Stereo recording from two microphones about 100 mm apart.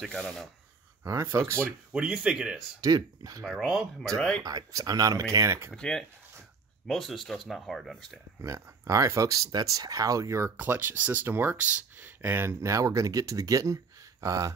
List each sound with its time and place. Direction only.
0.0 s rub: 5° left (ahead or behind)
1.0 s speech: 25° right (ahead or behind)
1.9 s speech: 10° right (ahead or behind)
2.8 s speech: 35° right (ahead or behind)
3.4 s speech: centre (ahead or behind)
4.4 s speech: 40° right (ahead or behind)
5.8 s speech: 5° left (ahead or behind)
8.4 s speech: 35° right (ahead or behind)
10.6 s speech: 20° right (ahead or behind)